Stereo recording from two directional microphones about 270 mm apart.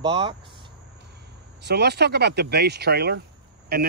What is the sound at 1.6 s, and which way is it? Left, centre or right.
Speech, right.